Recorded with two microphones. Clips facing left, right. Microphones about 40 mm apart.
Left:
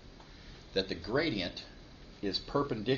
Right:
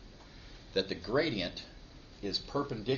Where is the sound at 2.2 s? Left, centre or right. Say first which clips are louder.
Left 2 dB; centre.